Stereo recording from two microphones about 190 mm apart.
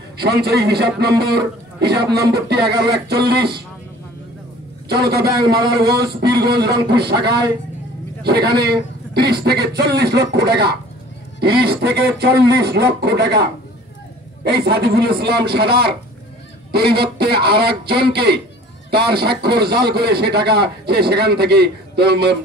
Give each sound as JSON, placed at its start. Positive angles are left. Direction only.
{"t": 0.2, "sound": "a man's voice", "side_deg": -55}
{"t": 4.8, "sound": "a man's voice", "side_deg": -55}
{"t": 6.4, "sound": "a man's voice", "side_deg": -55}